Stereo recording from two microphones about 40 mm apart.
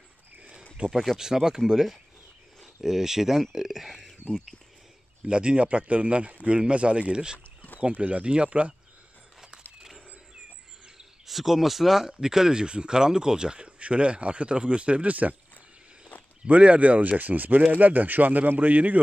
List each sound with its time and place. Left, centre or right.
0.4 s a sound: right
0.8 s speech: centre
2.6 s speech: centre
5.2 s speech: right
7.3 s a sound: left
7.8 s speech: right
9.8 s a sound: centre
11.2 s speech: centre; by 15.3 s right
16.4 s speech: right
17.2 s speech: right